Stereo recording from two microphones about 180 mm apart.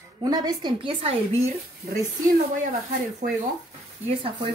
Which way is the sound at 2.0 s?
45° right (ahead or behind).